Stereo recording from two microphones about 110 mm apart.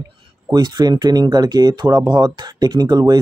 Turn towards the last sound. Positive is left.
turn(degrees=-40)  # may be behind; listen again after turning